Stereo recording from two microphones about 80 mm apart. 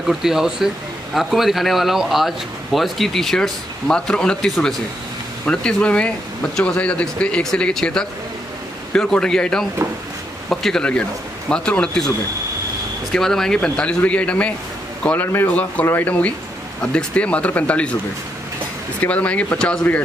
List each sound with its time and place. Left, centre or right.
0.0 s speech: centre
13.1 s speech: centre
18.9 s speech: centre